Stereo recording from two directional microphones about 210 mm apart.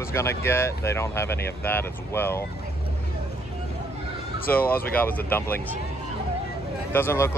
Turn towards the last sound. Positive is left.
turn(degrees=10)  # may be behind; listen again after turning